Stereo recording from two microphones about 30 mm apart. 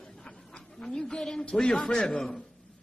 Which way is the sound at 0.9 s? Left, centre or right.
Left.